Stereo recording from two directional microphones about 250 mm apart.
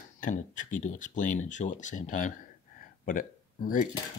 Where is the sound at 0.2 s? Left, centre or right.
Left.